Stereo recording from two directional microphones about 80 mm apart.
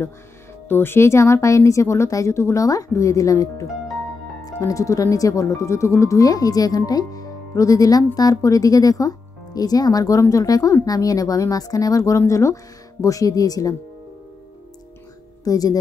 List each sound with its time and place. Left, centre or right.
0.7 s speech: left
15.4 s speech: left